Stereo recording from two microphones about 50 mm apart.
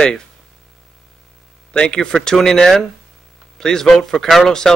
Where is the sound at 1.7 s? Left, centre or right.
Centre.